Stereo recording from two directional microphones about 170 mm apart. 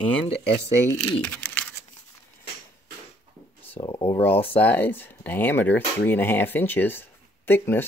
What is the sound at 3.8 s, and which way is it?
Speech, 25° left (ahead or behind).